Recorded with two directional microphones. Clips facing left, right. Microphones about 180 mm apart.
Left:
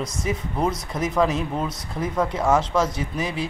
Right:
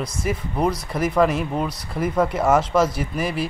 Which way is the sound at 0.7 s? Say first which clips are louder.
Right 3 dB; 5° right (ahead or behind).